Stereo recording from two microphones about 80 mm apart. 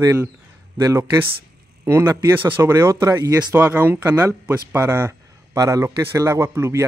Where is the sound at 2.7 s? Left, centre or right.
Right.